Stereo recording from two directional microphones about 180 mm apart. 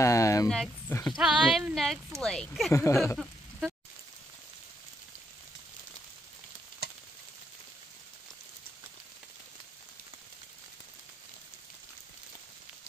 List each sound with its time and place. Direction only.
0.0 s a sound: 15° left (ahead or behind)
0.5 s speech: centre (ahead or behind)
2.7 s speech: 15° left (ahead or behind)
6.8 s frying: 60° right (ahead or behind)